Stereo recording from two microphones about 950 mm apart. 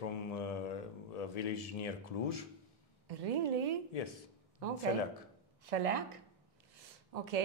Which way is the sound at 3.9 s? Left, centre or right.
Left.